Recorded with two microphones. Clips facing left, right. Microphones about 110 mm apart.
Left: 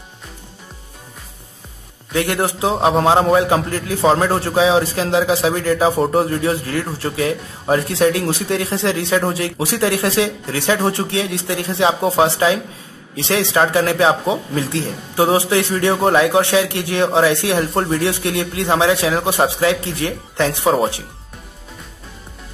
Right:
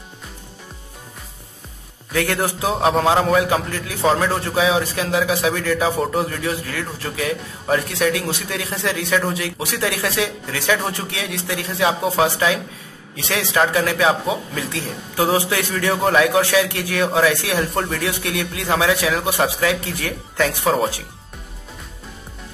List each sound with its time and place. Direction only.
2.1 s a man's voice: 20° left (ahead or behind)